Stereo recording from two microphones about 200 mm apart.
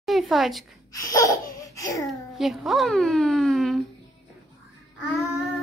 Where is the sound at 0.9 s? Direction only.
15° left (ahead or behind).